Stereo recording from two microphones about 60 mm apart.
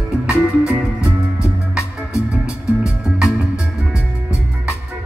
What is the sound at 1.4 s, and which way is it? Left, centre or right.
Music, left.